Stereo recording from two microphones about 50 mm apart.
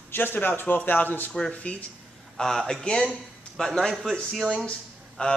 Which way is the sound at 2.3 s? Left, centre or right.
Centre.